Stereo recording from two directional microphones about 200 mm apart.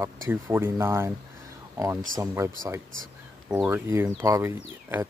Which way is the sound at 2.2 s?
15° right (ahead or behind).